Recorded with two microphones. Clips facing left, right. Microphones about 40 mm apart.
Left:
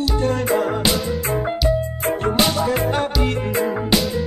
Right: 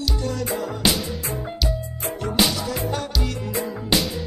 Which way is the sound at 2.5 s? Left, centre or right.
Left.